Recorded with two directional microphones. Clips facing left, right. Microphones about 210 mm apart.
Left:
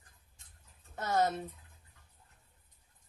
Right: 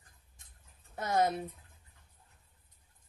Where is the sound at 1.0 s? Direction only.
15° right (ahead or behind).